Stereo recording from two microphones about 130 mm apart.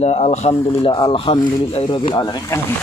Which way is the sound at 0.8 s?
40° left (ahead or behind).